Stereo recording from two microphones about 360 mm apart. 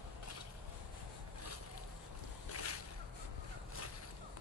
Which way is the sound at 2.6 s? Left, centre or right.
Left.